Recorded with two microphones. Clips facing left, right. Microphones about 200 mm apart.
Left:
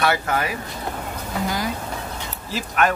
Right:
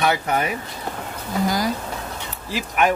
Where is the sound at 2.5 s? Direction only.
15° right (ahead or behind).